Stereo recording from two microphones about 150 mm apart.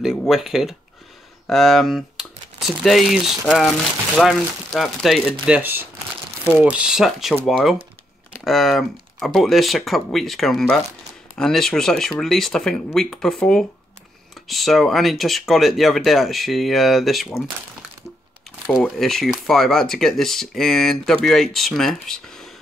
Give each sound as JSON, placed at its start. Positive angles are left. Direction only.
{"t": 0.3, "sound": "speech", "side_deg": -5}
{"t": 18.7, "sound": "speech", "side_deg": 0}